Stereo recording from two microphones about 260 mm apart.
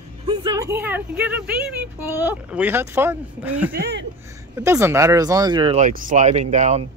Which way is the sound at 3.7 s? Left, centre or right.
Right.